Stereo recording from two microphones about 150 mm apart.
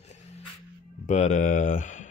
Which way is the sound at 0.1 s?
45° left (ahead or behind).